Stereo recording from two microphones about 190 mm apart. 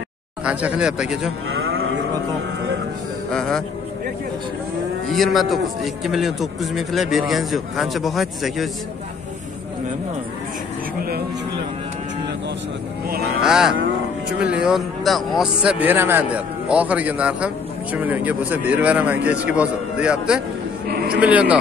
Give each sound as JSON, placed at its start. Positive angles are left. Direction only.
{"t": 0.4, "sound": "a man's voice", "side_deg": -5}
{"t": 1.5, "sound": "cattle", "side_deg": -90}
{"t": 3.3, "sound": "a man's voice", "side_deg": 5}
{"t": 5.0, "sound": "a man's voice", "side_deg": 0}
{"t": 11.0, "sound": "speech", "side_deg": -55}
{"t": 13.4, "sound": "a man's voice", "side_deg": -5}
{"t": 20.8, "sound": "a sound", "side_deg": -55}
{"t": 21.1, "sound": "a man's voice", "side_deg": -5}